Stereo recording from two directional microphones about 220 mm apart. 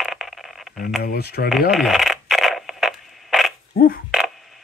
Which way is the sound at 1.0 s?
45° left (ahead or behind).